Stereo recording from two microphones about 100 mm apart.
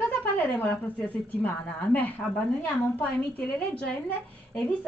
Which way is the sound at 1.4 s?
15° left (ahead or behind).